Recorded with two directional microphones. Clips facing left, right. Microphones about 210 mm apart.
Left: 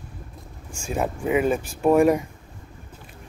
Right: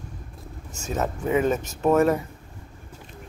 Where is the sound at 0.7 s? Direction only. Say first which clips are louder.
Left 1 dB; 10° left (ahead or behind).